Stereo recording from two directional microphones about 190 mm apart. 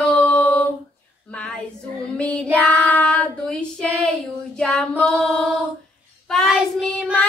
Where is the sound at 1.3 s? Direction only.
5° left (ahead or behind).